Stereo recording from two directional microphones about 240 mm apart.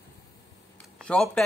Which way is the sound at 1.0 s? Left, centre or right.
Centre.